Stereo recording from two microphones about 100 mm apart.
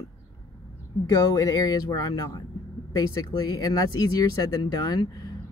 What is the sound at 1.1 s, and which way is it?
Speech, 35° left (ahead or behind).